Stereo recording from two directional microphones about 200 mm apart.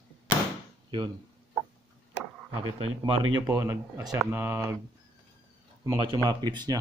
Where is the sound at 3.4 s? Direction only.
15° right (ahead or behind).